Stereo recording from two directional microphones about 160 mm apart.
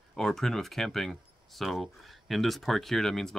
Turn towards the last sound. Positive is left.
turn(degrees=0)  # may be behind; listen again after turning